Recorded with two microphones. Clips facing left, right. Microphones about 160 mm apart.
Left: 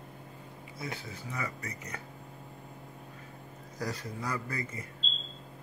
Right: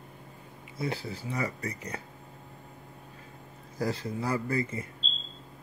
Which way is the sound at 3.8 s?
25° right (ahead or behind).